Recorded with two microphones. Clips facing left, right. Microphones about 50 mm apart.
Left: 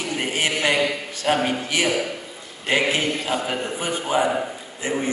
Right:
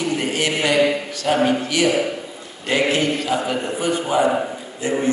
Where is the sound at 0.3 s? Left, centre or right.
Left.